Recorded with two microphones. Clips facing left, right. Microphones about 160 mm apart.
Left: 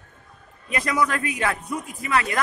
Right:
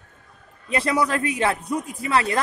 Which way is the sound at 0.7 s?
30° right (ahead or behind).